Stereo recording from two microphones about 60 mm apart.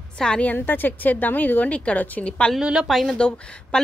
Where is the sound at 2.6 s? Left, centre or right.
Centre.